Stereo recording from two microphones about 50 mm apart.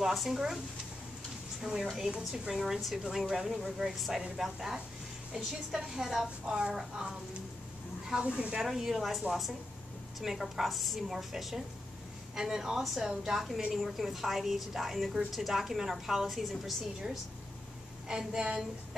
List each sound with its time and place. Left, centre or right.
0.0 s a woman's voice: centre
1.6 s a woman's voice: centre
8.2 s speech: right
8.5 s speech: centre
10.2 s a woman's voice: centre
13.0 s a woman's voice: centre
18.0 s speech: centre